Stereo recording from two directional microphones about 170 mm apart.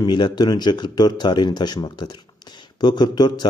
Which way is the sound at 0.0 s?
25° left (ahead or behind).